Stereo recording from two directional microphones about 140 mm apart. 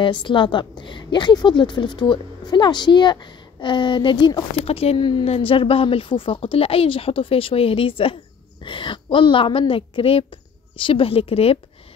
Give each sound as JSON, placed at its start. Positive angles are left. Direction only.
{"t": 0.0, "sound": "a woman's voice", "side_deg": 35}
{"t": 4.6, "sound": "a woman's voice", "side_deg": 45}